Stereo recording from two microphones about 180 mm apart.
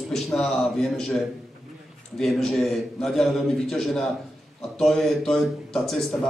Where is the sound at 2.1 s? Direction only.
Centre (ahead or behind).